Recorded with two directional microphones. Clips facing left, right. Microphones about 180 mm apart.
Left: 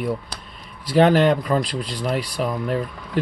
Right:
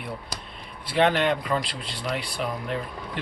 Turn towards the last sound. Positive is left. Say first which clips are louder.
# left 7 dB
turn(degrees=40)  # may be behind; listen again after turning